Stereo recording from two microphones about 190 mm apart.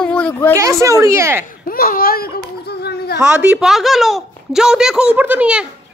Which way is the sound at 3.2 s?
5° right (ahead or behind).